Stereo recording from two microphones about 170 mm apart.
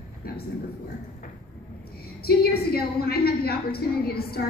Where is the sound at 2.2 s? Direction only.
65° left (ahead or behind).